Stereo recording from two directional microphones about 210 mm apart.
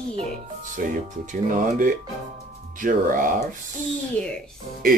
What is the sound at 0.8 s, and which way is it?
Speech, 40° right (ahead or behind).